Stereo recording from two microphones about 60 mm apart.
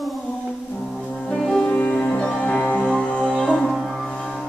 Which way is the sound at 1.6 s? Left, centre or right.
Left.